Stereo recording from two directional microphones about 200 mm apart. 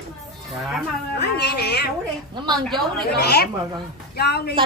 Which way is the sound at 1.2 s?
55° left (ahead or behind).